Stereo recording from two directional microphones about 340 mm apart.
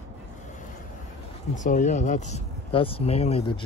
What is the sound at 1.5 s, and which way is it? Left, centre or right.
Speech, left.